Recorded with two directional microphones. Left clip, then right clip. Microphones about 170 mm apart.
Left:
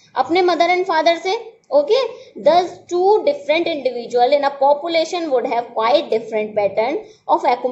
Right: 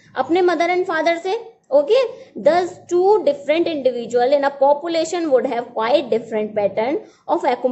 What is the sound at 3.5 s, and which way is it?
A woman's voice, 30° right (ahead or behind).